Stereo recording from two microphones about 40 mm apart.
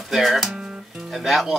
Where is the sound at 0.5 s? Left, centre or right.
Right.